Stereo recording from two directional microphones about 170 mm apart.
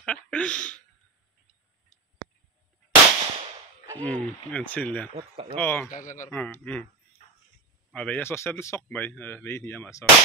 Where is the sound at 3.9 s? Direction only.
10° left (ahead or behind).